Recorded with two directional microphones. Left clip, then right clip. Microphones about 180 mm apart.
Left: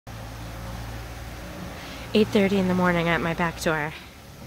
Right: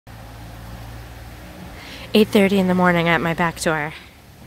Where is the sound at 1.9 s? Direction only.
30° right (ahead or behind).